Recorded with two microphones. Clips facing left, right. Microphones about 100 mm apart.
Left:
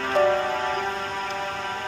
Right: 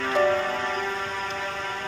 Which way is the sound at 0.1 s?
40° left (ahead or behind).